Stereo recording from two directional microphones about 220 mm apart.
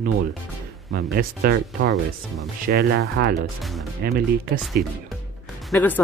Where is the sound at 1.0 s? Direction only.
45° right (ahead or behind).